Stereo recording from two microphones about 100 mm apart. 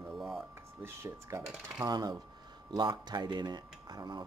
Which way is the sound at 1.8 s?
40° right (ahead or behind).